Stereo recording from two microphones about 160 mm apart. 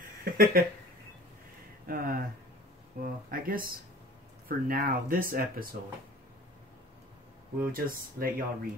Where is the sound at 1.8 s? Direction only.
65° right (ahead or behind).